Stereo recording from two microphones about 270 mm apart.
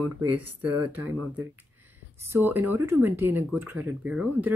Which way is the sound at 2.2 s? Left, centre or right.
Centre.